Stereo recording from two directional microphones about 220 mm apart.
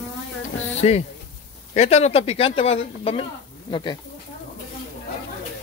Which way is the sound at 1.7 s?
30° left (ahead or behind).